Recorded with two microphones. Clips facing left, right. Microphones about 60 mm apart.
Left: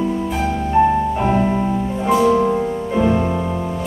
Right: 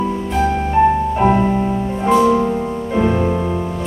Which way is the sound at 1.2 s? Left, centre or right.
Centre.